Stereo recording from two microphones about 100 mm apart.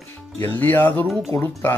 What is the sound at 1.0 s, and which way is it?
Speech, centre (ahead or behind).